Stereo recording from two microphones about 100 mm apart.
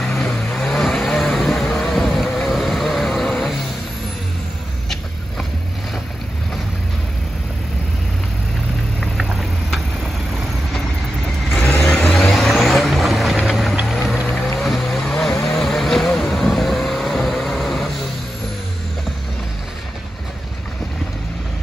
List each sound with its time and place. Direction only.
0.0 s vehicle: 5° left (ahead or behind)
9.0 s patter: 5° right (ahead or behind)
11.7 s vehicle: 20° left (ahead or behind)
12.1 s vehicle: 5° left (ahead or behind)